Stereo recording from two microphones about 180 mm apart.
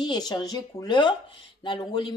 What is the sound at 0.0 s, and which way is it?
A woman's voice, 25° left (ahead or behind).